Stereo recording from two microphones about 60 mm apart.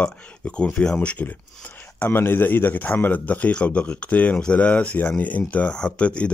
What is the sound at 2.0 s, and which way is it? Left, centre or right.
A man's voice, left.